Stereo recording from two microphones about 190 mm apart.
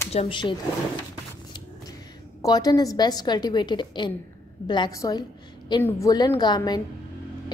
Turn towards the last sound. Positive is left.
turn(degrees=20)  # may be behind; listen again after turning